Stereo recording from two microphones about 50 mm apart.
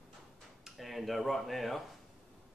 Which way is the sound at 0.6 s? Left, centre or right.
Centre.